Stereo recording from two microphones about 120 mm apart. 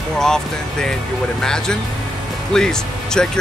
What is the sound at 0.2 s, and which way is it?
Speech, 5° left (ahead or behind).